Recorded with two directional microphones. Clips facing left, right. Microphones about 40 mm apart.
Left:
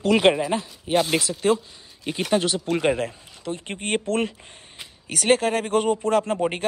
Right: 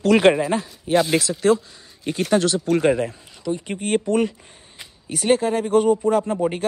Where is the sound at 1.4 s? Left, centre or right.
Left.